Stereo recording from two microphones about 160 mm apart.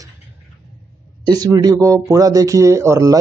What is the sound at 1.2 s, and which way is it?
Speech, 25° right (ahead or behind).